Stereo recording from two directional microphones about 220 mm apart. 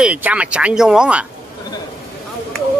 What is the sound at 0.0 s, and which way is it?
Speech, 5° right (ahead or behind).